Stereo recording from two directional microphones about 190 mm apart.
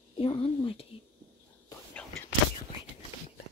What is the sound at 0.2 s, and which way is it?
Whispering, 25° left (ahead or behind).